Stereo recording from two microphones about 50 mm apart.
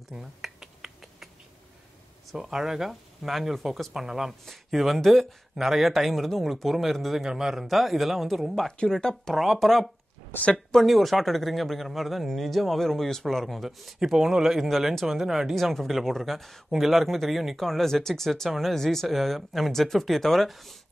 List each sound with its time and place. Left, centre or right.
0.1 s a sound: centre
2.3 s speech: centre
10.3 s a woman's voice: left
10.7 s speech: centre
15.5 s speech: centre